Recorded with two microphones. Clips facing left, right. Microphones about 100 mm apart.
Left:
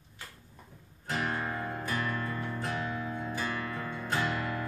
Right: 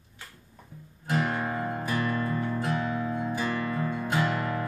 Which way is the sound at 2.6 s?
5° right (ahead or behind).